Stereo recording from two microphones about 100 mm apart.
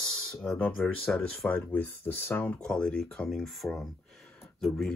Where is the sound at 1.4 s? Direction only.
15° left (ahead or behind).